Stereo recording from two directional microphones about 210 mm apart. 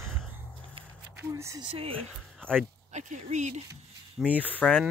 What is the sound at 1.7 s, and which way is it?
Speech, 25° right (ahead or behind).